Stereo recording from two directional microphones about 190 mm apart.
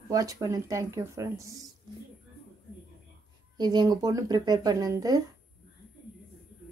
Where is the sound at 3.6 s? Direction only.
20° right (ahead or behind).